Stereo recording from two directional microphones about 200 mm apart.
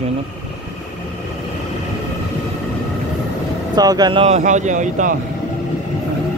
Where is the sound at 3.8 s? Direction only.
20° right (ahead or behind); by 5.1 s 40° right (ahead or behind).